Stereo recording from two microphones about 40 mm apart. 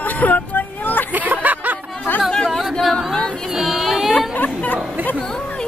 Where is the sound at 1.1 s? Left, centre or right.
Right.